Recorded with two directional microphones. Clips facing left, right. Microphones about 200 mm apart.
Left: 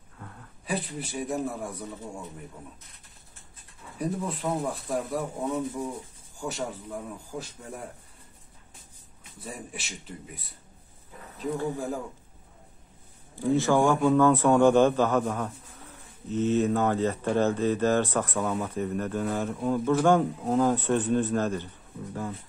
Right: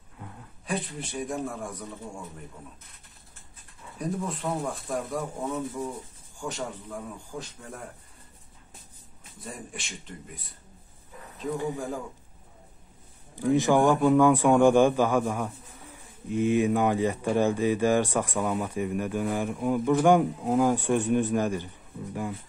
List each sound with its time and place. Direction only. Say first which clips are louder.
0.7 s a man's voice: even; 5° left (ahead or behind)
4.0 s a man's voice: left 1 dB; 5° left (ahead or behind)
9.4 s speech: left 1 dB; 5° left (ahead or behind)
11.5 s speech: even; 15° right (ahead or behind)
13.5 s speech: right 1 dB; 15° right (ahead or behind)